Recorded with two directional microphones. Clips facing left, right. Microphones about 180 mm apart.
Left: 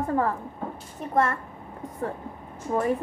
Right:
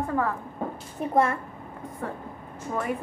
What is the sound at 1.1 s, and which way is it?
Speech, 10° right (ahead or behind).